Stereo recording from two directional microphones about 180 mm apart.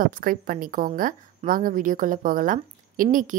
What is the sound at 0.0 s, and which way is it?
A woman's voice, 50° right (ahead or behind).